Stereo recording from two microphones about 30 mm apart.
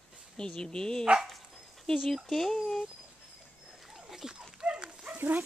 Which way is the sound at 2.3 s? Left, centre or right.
Centre.